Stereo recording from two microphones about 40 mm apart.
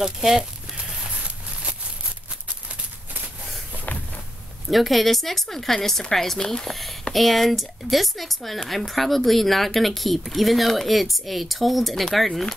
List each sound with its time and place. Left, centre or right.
0.0 s speech: centre
4.6 s speech: centre
6.7 s speech: centre